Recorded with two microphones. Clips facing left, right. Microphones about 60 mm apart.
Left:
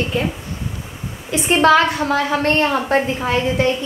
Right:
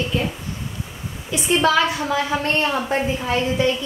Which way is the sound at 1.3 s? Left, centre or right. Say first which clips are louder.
Left 5 dB; left.